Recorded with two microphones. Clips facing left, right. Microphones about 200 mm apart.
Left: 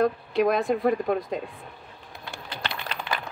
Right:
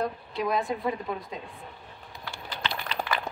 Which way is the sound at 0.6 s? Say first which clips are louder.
Left 6 dB; 50° left (ahead or behind).